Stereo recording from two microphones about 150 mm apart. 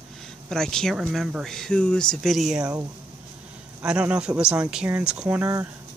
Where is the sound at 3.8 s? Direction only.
5° right (ahead or behind).